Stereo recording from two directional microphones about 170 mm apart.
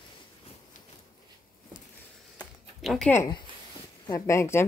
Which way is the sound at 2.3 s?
Centre (ahead or behind).